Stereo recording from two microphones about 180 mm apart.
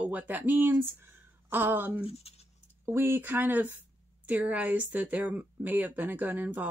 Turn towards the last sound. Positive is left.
turn(degrees=-10)  # may be behind; listen again after turning